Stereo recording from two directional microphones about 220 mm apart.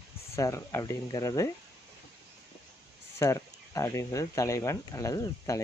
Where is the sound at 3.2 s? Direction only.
15° left (ahead or behind).